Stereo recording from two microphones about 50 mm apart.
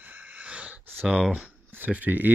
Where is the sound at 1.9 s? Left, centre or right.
Right.